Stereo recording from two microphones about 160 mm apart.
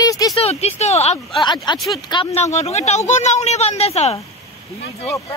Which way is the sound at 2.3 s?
45° left (ahead or behind).